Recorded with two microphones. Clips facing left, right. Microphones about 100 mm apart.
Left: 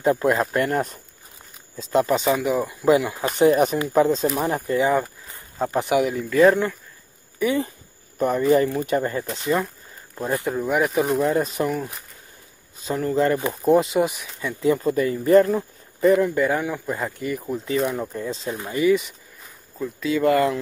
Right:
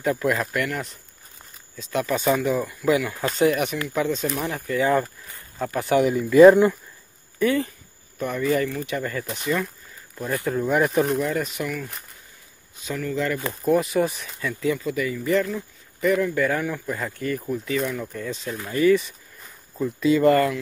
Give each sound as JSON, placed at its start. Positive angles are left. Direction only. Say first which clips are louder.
{"t": 0.0, "sound": "speech", "louder": "left 4 dB", "side_deg": 30}
{"t": 2.4, "sound": "speech", "louder": "left 2 dB", "side_deg": 15}
{"t": 3.9, "sound": "speech", "louder": "left 6 dB", "side_deg": 35}
{"t": 5.9, "sound": "speech", "louder": "right 5 dB", "side_deg": 0}
{"t": 7.3, "sound": "speech", "louder": "even", "side_deg": 20}
{"t": 8.2, "sound": "speech", "louder": "left 5 dB", "side_deg": 35}
{"t": 10.6, "sound": "speech", "louder": "right 2 dB", "side_deg": 5}
{"t": 11.1, "sound": "speech", "louder": "left 4 dB", "side_deg": 30}
{"t": 13.6, "sound": "speech", "louder": "left 2 dB", "side_deg": 25}
{"t": 14.4, "sound": "speech", "louder": "left 4 dB", "side_deg": 25}
{"t": 16.0, "sound": "speech", "louder": "left 4 dB", "side_deg": 30}
{"t": 17.8, "sound": "speech", "louder": "left 3 dB", "side_deg": 30}
{"t": 19.4, "sound": "a sound", "louder": "right 3 dB", "side_deg": 0}